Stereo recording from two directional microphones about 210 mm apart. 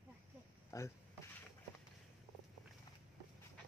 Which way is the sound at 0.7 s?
15° left (ahead or behind).